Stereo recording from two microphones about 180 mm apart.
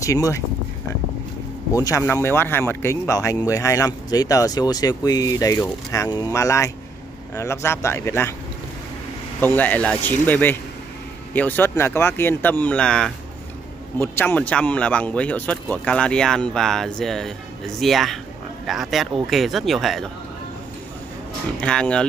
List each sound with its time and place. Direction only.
0.0 s speech: 20° left (ahead or behind)
1.7 s speech: 20° left (ahead or behind)
9.4 s speech: 10° left (ahead or behind)
21.5 s speech: 5° left (ahead or behind)